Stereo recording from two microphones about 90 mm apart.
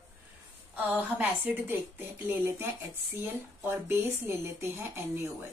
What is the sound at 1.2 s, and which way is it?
A woman's voice, 20° right (ahead or behind).